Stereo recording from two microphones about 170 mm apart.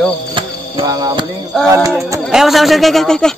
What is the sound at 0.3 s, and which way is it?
Music, 30° right (ahead or behind).